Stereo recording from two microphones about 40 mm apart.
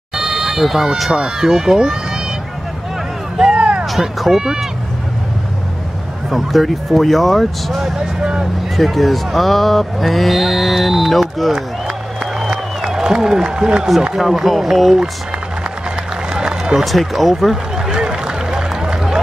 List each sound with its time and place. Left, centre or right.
0.1 s a sound: centre
1.1 s speech: centre
3.3 s a sound: right
3.8 s speech: centre
6.3 s speech: centre
7.8 s speech: centre
8.7 s speech: centre
12.2 s a sound: centre
14.1 s speech: centre
16.3 s run: centre
16.8 s speech: centre
17.9 s run: centre